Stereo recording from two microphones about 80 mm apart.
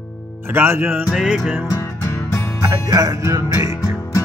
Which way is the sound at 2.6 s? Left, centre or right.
Right.